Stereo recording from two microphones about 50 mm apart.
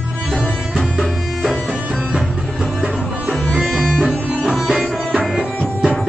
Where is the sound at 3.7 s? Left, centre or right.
Centre.